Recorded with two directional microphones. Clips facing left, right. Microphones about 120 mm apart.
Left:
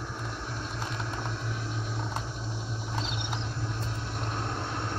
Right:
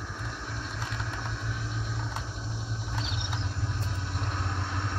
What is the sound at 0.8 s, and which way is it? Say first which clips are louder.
Vehicle: left 2 dB; 40° left (ahead or behind).